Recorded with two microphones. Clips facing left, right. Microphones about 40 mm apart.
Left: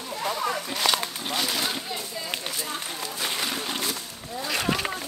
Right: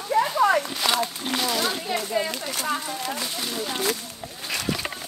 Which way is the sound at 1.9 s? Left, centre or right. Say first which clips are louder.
Right 8 dB; right.